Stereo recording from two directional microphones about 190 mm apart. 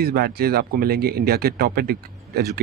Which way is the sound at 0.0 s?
55° right (ahead or behind).